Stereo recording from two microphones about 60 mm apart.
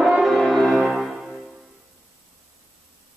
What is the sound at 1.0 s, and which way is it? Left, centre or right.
Music, centre.